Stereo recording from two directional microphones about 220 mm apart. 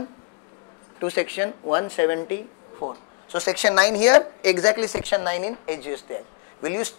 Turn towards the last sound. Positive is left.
turn(degrees=10)  # may be behind; listen again after turning